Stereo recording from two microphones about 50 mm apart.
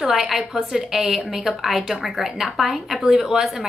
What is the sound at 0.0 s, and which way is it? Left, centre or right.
A woman's voice, centre.